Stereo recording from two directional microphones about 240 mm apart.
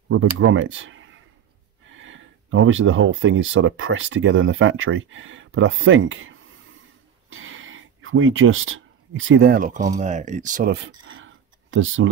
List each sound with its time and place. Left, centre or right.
0.1 s speech: right
7.2 s a sound: right
9.9 s speech: right